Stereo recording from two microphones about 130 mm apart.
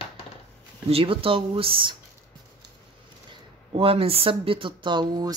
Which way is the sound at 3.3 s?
45° right (ahead or behind).